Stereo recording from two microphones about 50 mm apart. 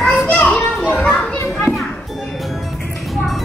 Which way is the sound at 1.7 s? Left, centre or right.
Centre.